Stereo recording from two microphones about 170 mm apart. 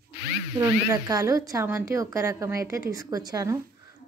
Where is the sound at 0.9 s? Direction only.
20° right (ahead or behind).